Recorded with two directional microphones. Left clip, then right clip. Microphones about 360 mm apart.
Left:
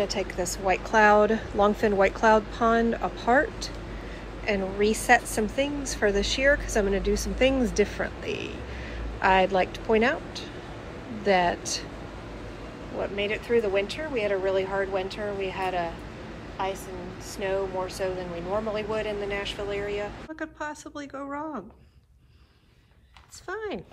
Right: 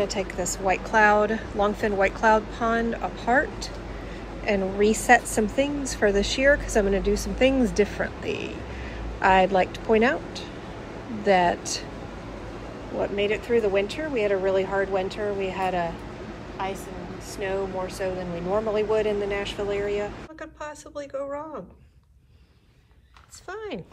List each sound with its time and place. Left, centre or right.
0.0 s a woman's voice: centre
8.2 s a man's voice: left
9.2 s a woman's voice: centre
11.2 s a woman's voice: centre
13.0 s a woman's voice: centre
23.5 s a woman's voice: centre